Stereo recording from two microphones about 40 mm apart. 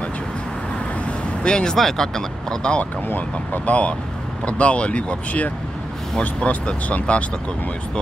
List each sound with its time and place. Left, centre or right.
1.4 s speech: left
1.8 s speech: centre
3.6 s speech: left
6.2 s speech: left